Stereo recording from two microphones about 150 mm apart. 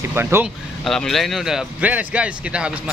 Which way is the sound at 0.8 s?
Centre (ahead or behind).